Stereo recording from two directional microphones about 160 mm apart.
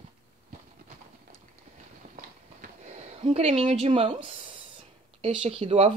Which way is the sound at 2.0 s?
45° right (ahead or behind).